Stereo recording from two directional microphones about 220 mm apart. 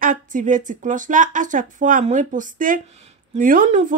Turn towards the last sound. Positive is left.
turn(degrees=-35)  # may be behind; listen again after turning